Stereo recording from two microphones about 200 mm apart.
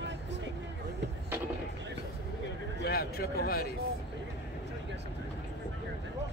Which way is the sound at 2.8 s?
50° left (ahead or behind).